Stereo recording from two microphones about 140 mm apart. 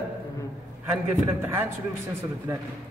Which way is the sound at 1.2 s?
15° right (ahead or behind).